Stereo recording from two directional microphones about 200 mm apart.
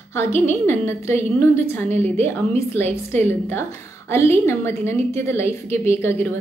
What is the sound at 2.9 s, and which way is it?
A woman's voice, 10° left (ahead or behind).